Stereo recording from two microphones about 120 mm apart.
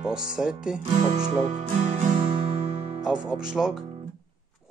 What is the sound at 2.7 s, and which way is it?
Music, 70° right (ahead or behind).